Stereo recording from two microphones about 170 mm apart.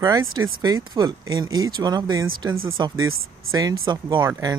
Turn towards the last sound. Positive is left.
turn(degrees=-25)  # may be behind; listen again after turning